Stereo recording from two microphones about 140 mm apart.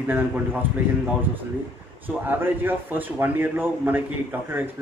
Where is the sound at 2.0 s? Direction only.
15° right (ahead or behind).